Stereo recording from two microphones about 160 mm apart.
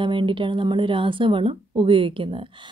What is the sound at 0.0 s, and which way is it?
Speech, 30° right (ahead or behind).